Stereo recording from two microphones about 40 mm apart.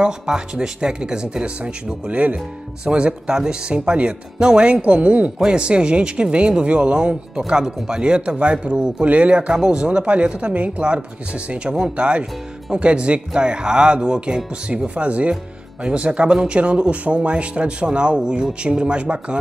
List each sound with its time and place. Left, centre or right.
0.0 s speech: right
9.5 s speech: centre
15.0 s speech: right